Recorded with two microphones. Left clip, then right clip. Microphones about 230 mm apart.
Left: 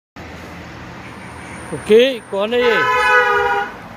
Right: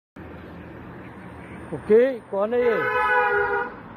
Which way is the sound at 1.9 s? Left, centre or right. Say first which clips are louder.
Left 6 dB; centre.